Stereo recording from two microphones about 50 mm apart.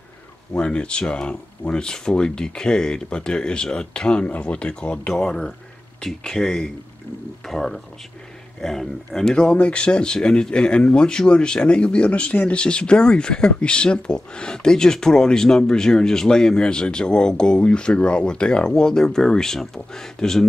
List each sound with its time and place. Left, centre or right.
0.6 s speech: left